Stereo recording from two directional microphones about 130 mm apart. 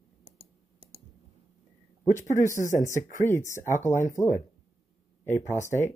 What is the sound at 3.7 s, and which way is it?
Speech, 70° left (ahead or behind).